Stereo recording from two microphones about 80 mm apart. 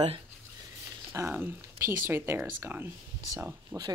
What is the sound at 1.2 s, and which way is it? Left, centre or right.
Speech, right.